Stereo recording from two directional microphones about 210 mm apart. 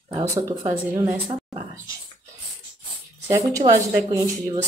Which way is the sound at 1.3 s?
30° right (ahead or behind).